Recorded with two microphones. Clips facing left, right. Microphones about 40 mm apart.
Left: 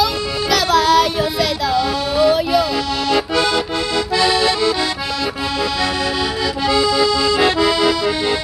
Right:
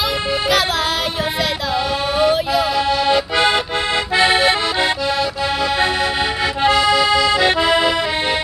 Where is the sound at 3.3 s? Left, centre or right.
Right.